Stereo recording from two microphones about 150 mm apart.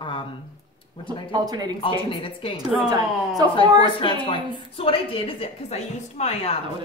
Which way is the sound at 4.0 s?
35° left (ahead or behind).